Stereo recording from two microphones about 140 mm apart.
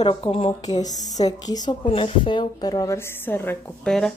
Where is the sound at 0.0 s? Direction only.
35° left (ahead or behind).